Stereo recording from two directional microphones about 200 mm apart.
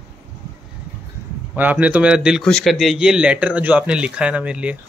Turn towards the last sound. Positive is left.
turn(degrees=-5)  # may be behind; listen again after turning